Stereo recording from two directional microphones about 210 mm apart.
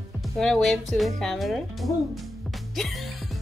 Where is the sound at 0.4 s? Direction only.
Centre (ahead or behind).